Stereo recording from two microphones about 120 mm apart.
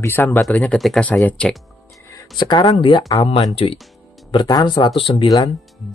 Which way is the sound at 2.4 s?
40° left (ahead or behind).